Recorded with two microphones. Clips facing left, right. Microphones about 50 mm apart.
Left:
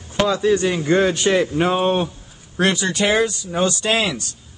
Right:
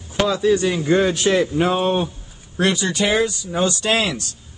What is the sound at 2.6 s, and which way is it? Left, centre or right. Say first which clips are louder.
Speech: left 1 dB; left.